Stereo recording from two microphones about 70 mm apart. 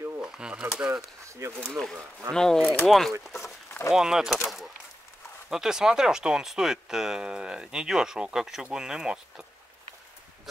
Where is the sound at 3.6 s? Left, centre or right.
Left.